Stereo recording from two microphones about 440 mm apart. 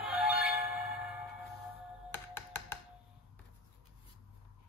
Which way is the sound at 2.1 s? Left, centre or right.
Centre.